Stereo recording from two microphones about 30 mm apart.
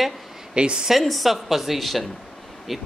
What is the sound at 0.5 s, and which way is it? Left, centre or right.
Speech, right.